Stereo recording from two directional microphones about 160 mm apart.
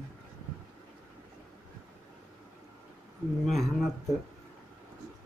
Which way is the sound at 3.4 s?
Centre (ahead or behind).